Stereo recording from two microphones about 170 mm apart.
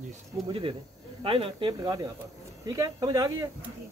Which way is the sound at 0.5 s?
30° right (ahead or behind).